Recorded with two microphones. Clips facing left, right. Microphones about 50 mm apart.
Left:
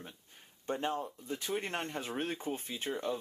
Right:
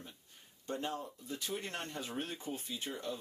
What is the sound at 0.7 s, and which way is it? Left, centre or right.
Speech, left.